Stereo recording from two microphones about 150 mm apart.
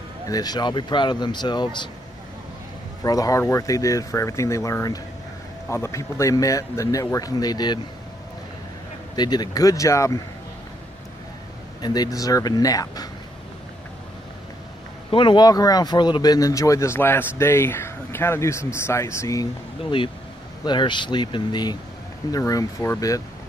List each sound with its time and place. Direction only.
0.3 s speech: 25° left (ahead or behind)
3.0 s speech: 25° left (ahead or behind)
9.1 s speech: 30° left (ahead or behind)
11.8 s speech: 25° left (ahead or behind)
15.0 s speech: 35° left (ahead or behind)
20.6 s speech: 30° left (ahead or behind)